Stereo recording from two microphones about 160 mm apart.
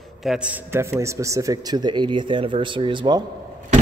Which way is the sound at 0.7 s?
15° right (ahead or behind).